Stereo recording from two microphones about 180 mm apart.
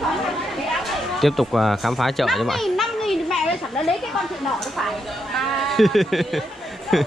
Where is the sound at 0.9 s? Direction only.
Centre (ahead or behind).